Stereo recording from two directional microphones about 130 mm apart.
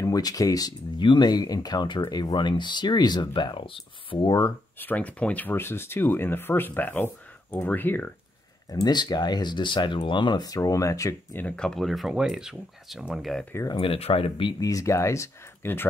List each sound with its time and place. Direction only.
0.0 s speech: 25° left (ahead or behind)
4.3 s speech: 25° left (ahead or behind)
4.7 s speech: 15° left (ahead or behind)
8.8 s speech: 35° left (ahead or behind)
11.4 s speech: 5° left (ahead or behind)
13.7 s speech: 45° left (ahead or behind)
14.6 s speech: 25° left (ahead or behind)